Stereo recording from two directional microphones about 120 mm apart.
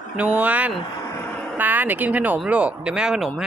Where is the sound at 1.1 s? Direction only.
15° left (ahead or behind).